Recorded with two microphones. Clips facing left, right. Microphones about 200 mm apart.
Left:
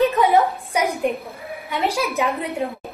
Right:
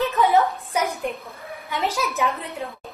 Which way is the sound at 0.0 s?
15° left (ahead or behind).